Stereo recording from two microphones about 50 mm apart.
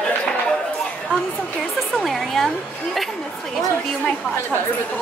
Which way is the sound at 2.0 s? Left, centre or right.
Centre.